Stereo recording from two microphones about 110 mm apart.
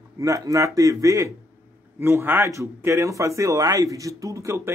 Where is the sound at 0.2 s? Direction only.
30° right (ahead or behind).